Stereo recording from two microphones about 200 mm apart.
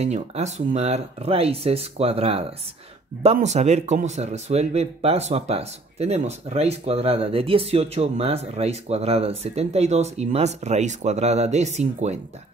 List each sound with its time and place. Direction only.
0.0 s speech: 35° right (ahead or behind)